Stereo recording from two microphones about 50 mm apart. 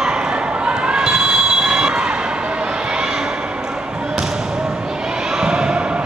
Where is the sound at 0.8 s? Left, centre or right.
Centre.